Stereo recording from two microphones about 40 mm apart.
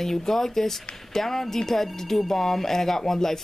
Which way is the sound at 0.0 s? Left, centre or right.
Centre.